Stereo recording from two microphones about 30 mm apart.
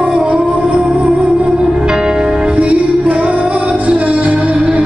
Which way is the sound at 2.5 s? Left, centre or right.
Right.